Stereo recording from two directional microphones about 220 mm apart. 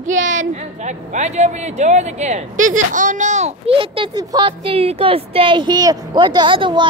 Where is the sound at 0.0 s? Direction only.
35° right (ahead or behind).